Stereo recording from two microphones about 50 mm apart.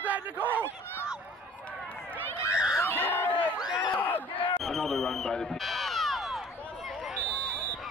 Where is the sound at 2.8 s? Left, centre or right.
Left.